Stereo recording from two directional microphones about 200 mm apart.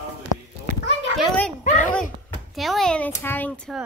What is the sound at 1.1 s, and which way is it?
Speech, 5° left (ahead or behind).